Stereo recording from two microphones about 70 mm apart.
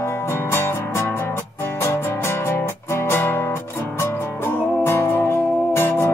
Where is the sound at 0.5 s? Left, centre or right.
Left.